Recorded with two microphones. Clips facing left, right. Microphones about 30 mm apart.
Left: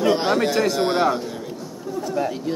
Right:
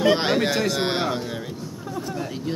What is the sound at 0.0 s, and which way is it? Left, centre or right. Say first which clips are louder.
Speech: left 1 dB; right.